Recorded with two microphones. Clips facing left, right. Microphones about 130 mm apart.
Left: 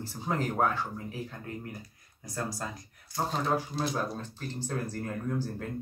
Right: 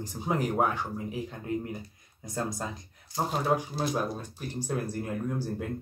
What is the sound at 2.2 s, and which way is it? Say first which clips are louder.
Speech: right 2 dB; 20° right (ahead or behind).